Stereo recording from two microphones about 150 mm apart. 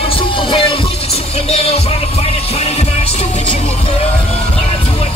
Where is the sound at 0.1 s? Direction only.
35° left (ahead or behind).